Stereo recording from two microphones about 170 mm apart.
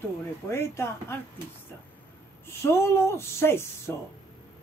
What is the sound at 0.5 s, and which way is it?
Speech, 15° left (ahead or behind).